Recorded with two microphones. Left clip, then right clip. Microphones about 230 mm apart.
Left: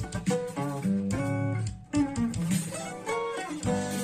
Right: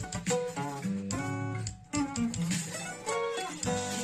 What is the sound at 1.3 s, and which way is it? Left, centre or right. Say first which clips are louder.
Guitar: left 4 dB; right.